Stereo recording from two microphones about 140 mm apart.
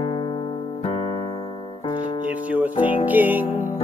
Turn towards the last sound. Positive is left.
turn(degrees=-15)  # may be behind; listen again after turning